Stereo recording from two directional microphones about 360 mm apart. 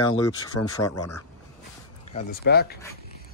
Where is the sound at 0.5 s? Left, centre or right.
Left.